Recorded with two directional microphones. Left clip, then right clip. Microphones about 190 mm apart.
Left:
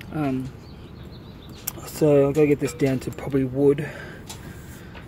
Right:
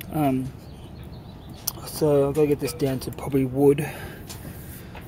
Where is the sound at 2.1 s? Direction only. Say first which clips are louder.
Left 2 dB; 25° left (ahead or behind).